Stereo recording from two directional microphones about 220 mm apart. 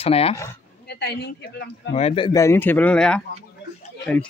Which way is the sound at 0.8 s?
45° left (ahead or behind).